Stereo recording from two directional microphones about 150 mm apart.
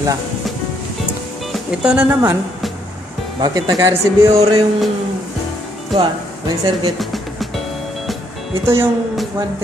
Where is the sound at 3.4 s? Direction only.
25° right (ahead or behind).